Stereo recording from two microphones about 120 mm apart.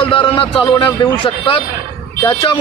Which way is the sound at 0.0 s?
45° left (ahead or behind).